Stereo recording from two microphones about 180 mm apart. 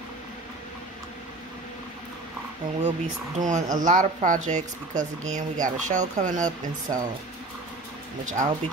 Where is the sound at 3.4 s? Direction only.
45° right (ahead or behind).